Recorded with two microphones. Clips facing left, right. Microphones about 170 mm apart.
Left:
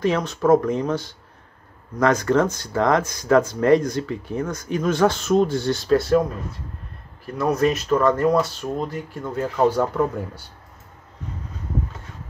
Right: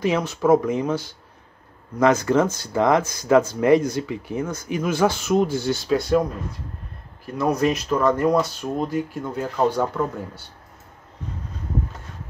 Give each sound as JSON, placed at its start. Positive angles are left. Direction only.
{"t": 0.0, "sound": "speech", "side_deg": -5}
{"t": 2.1, "sound": "speech", "side_deg": -5}
{"t": 2.7, "sound": "speech", "side_deg": -15}
{"t": 7.3, "sound": "speech", "side_deg": 0}